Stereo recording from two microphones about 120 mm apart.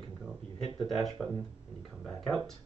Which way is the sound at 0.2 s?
5° right (ahead or behind).